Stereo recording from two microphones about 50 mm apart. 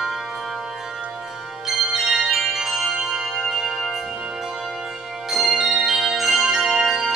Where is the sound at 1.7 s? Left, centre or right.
Centre.